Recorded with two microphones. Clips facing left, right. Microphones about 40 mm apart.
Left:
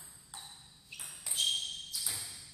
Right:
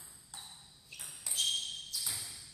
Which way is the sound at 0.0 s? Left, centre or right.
Centre.